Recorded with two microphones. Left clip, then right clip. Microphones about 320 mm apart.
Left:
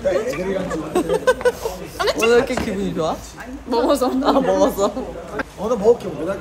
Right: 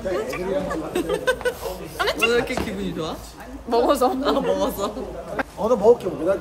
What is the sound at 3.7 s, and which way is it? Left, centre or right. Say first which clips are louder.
Speech: left 1 dB; centre.